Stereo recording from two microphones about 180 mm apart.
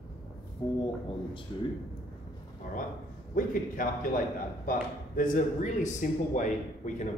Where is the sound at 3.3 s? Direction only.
50° left (ahead or behind).